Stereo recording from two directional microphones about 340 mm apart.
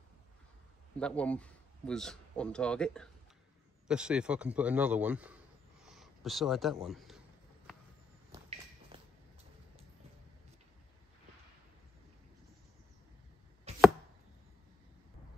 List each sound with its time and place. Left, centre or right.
0.9 s a man's voice: centre
5.9 s a sound: centre
13.7 s chopping: centre